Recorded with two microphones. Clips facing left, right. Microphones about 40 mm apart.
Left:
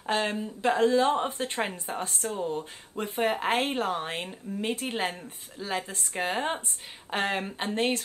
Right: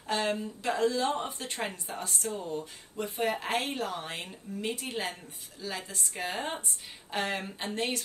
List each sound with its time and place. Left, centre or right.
0.0 s speech: left